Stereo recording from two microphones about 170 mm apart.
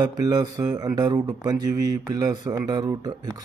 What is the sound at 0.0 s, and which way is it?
Speech, 25° right (ahead or behind).